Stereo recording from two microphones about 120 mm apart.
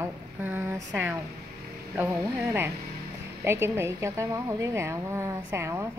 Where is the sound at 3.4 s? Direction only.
20° right (ahead or behind).